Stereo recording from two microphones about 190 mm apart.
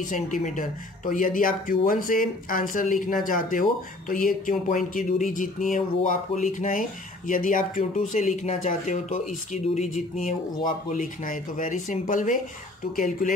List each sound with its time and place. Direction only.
0.0 s speech: 45° left (ahead or behind)